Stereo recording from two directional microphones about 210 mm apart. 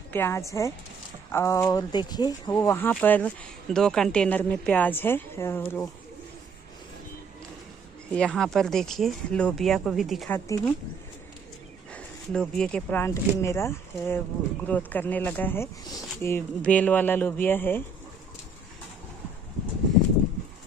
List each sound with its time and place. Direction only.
0.1 s speech: 10° left (ahead or behind)
8.1 s speech: 5° left (ahead or behind)
10.3 s speech: 10° left (ahead or behind)
11.9 s speech: 5° left (ahead or behind)